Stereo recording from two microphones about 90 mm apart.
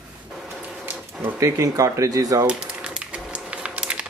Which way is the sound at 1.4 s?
40° right (ahead or behind).